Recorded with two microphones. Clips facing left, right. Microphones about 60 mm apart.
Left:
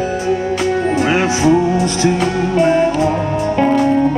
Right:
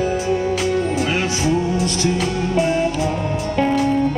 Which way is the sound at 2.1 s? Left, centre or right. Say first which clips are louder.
Left 5 dB; left.